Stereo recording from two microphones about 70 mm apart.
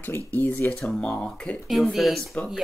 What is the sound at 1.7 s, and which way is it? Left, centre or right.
Speech, centre.